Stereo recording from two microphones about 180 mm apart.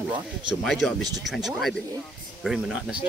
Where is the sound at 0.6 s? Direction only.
Centre (ahead or behind).